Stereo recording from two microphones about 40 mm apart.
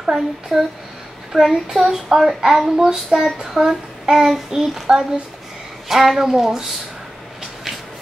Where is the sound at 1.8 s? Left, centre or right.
Centre.